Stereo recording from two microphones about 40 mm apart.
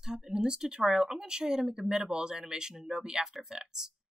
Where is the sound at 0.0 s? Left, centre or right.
Centre.